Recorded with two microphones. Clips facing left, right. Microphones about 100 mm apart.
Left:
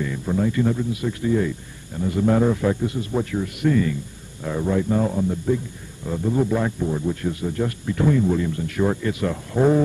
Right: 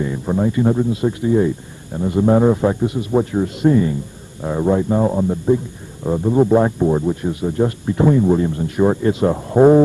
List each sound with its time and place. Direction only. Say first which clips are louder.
0.0 s a man's voice: right 4 dB; 30° right (ahead or behind)
7.1 s a man's voice: right 4 dB; 20° right (ahead or behind)